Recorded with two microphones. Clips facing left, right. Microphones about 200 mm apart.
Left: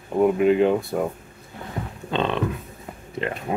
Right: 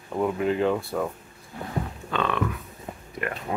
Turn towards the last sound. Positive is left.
turn(degrees=25)  # may be behind; listen again after turning